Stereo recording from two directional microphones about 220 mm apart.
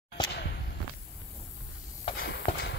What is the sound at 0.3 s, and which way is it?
Basketball bounce, 50° left (ahead or behind).